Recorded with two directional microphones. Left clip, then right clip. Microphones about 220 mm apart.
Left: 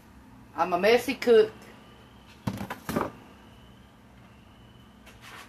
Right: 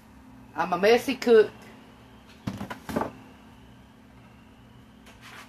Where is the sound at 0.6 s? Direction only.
30° right (ahead or behind).